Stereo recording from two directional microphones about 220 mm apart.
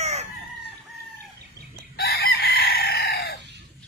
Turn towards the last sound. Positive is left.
turn(degrees=45)  # may be behind; listen again after turning